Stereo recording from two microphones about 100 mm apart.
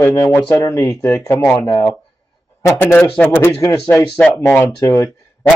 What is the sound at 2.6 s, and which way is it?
Speech, 20° left (ahead or behind).